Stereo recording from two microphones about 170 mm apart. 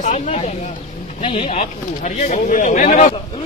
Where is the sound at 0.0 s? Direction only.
45° left (ahead or behind).